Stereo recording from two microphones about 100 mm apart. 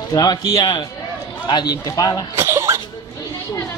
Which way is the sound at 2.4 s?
25° right (ahead or behind).